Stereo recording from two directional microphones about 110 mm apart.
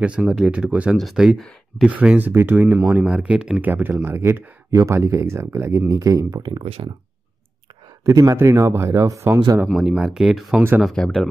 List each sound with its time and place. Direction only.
0.0 s speech: 10° right (ahead or behind); by 6.4 s 30° right (ahead or behind)
6.4 s speech: 50° right (ahead or behind)
8.0 s speech: 30° right (ahead or behind)
9.8 s speech: 10° right (ahead or behind)